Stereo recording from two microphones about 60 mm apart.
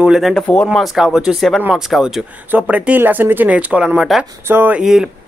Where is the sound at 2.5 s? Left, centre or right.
Right.